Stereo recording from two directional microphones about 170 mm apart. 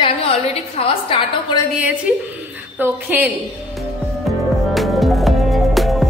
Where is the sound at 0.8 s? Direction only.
30° left (ahead or behind).